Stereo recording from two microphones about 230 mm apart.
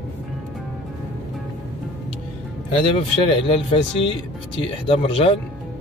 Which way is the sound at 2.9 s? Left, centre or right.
Left.